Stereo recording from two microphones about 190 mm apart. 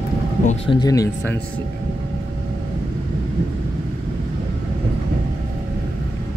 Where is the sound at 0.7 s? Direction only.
20° left (ahead or behind).